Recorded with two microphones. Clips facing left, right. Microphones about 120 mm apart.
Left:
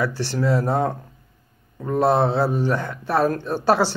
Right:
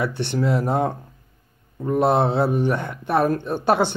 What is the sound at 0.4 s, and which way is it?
Speech, 20° right (ahead or behind).